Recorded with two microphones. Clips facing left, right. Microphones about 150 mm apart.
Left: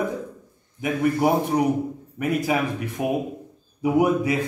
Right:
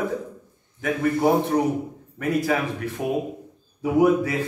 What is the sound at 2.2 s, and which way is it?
A man's voice, 15° left (ahead or behind).